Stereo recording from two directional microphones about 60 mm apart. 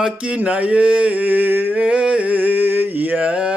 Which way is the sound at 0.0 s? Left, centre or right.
Centre.